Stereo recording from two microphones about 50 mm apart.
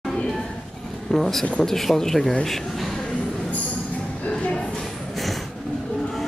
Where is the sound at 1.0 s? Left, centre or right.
Centre.